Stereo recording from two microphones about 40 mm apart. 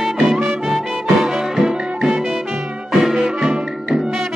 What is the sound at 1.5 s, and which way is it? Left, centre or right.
Music, centre.